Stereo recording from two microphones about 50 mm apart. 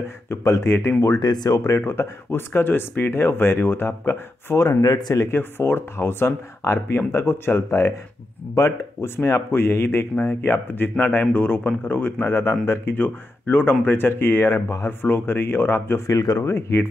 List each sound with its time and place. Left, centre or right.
0.3 s speech: left
1.9 s speech: left
4.6 s speech: left
5.3 s speech: left
8.5 s speech: left
9.1 s speech: left
10.2 s speech: left
12.2 s speech: left
12.9 s speech: left
14.9 s speech: left
16.3 s speech: left